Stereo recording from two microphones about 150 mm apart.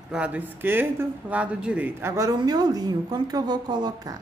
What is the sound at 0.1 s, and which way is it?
Speech, 10° right (ahead or behind).